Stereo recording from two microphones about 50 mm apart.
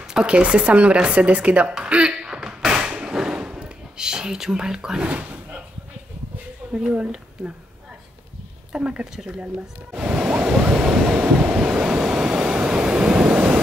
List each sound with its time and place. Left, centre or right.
0.0 s speech: centre
2.1 s thump: centre
6.7 s speech: right
8.7 s speech: right
9.9 s waves: centre